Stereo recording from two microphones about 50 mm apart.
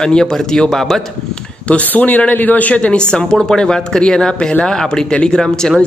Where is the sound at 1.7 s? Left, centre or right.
Left.